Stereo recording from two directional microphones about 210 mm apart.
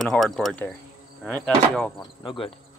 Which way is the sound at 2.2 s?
25° left (ahead or behind).